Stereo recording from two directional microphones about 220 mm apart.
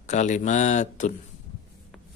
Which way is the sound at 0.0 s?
35° left (ahead or behind).